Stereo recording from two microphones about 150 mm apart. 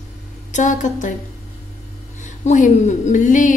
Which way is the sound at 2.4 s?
55° left (ahead or behind).